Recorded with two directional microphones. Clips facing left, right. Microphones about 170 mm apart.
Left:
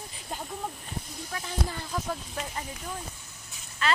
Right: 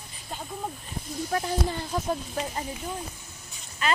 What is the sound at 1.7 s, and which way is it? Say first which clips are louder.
Speech: right 5 dB; 30° right (ahead or behind).